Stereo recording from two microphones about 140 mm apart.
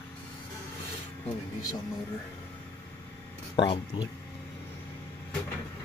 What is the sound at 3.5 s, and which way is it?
Speech, 35° left (ahead or behind).